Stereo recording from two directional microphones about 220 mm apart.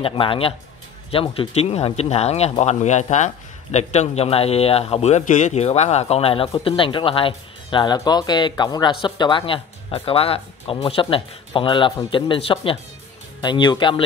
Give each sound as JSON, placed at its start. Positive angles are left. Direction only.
{"t": 0.0, "sound": "a man's voice", "side_deg": 25}